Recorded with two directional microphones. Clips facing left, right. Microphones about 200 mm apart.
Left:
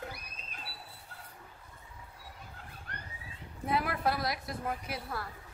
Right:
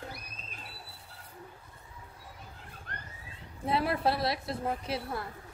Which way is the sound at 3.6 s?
25° right (ahead or behind).